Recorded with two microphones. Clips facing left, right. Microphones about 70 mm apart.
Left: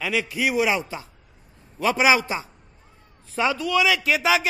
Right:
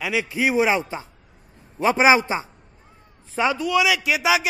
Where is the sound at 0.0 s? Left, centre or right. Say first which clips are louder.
Right 2 dB; right.